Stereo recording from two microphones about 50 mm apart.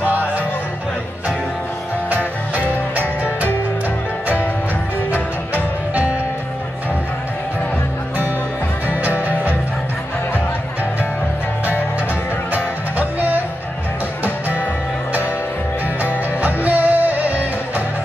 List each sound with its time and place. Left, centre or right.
2.6 s music: left
8.8 s music: right
16.0 s music: right